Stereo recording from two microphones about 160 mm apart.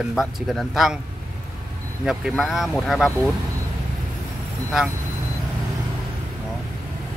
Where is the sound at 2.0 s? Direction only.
5° right (ahead or behind).